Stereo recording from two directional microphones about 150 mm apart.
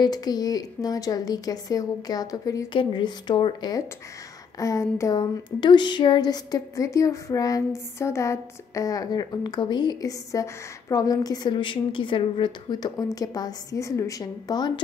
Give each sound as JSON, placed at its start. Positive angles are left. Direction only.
{"t": 0.0, "sound": "speech", "side_deg": 25}